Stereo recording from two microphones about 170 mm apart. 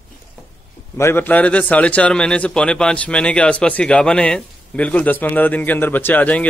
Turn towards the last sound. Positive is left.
turn(degrees=10)  # may be behind; listen again after turning